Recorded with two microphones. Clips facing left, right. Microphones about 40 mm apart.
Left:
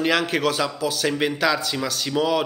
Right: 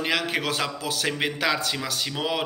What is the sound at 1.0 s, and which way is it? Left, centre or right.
A man's voice, centre.